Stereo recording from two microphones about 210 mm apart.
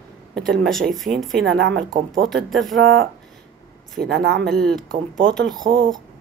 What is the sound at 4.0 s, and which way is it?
Speech, 50° right (ahead or behind).